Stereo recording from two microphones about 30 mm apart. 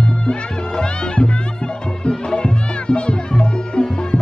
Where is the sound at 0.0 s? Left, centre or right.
Left.